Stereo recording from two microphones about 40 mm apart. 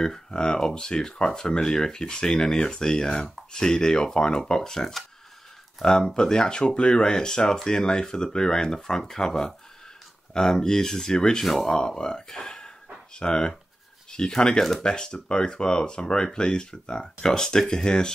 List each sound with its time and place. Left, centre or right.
0.0 s speech: centre